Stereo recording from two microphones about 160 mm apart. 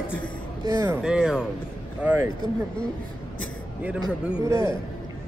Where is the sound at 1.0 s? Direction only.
5° right (ahead or behind).